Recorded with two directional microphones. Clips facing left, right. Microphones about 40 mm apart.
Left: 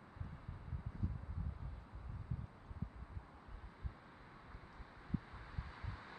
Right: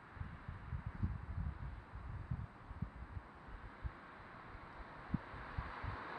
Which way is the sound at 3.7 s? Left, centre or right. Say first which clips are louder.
Right 4 dB; right.